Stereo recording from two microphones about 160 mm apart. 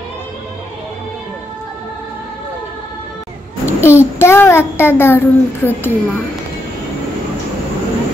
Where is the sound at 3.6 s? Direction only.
15° left (ahead or behind).